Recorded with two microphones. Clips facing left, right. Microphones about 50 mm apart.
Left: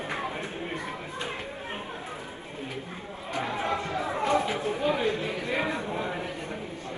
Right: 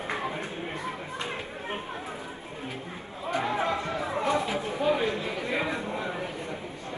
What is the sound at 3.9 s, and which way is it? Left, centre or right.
Chatter, left.